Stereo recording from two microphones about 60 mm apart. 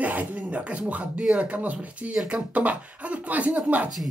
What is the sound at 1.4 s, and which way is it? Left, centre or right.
Speech, right.